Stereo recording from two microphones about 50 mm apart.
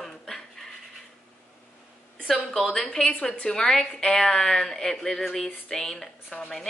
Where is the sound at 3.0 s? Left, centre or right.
Centre.